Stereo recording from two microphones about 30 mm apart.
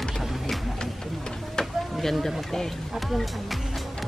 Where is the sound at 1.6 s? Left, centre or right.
Left.